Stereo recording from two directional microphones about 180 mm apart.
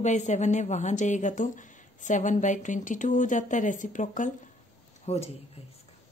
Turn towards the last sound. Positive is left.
turn(degrees=35)  # may be behind; listen again after turning